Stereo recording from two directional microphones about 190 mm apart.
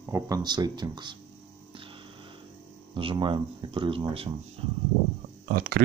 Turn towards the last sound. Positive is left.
turn(degrees=-50)  # may be behind; listen again after turning